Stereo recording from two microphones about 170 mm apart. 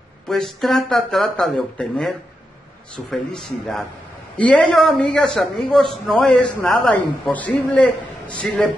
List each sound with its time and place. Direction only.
0.3 s a man's voice: centre (ahead or behind)